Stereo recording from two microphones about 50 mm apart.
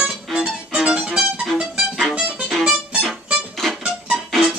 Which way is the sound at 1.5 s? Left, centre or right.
Centre.